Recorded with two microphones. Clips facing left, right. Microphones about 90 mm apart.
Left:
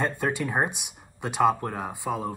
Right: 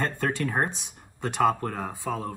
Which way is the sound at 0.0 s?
10° left (ahead or behind).